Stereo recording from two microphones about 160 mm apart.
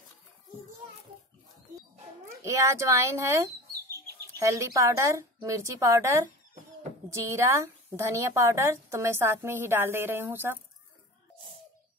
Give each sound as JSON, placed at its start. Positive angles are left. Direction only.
{"t": 2.4, "sound": "a woman's voice", "side_deg": -20}